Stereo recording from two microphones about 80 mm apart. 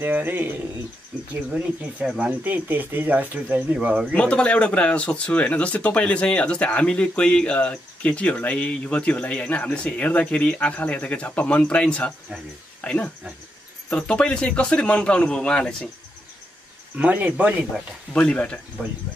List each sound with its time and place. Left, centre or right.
0.0 s speech: right
1.1 s speech: centre
2.4 s speech: right
4.1 s speech: centre
16.9 s speech: centre
18.1 s speech: centre